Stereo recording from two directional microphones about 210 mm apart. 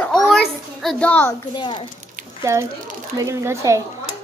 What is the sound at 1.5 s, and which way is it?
Speech, 20° left (ahead or behind).